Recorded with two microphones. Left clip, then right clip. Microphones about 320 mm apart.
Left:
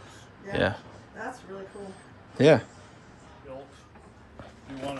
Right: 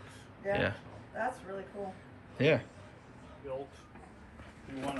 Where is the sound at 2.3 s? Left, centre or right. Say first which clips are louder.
Left 9 dB; centre.